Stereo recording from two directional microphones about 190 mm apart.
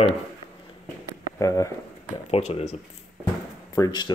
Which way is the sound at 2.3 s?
35° left (ahead or behind).